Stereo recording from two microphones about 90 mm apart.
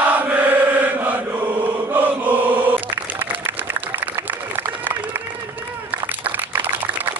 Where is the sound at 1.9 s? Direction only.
20° right (ahead or behind).